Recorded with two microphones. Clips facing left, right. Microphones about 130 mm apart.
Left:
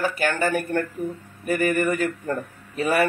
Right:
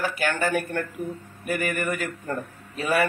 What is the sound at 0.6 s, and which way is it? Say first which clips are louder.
Speech: left 3 dB; 15° left (ahead or behind).